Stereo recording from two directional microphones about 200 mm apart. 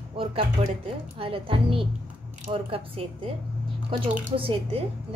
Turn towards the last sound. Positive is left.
turn(degrees=-25)  # may be behind; listen again after turning